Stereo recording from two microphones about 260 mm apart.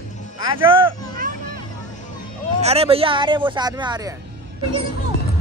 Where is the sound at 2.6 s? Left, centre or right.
Right.